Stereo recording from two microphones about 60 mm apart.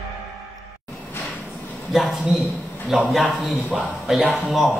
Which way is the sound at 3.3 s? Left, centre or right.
Right.